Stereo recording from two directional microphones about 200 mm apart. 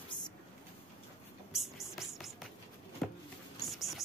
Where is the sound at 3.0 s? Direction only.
Centre (ahead or behind).